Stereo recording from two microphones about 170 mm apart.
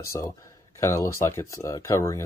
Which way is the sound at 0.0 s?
15° left (ahead or behind).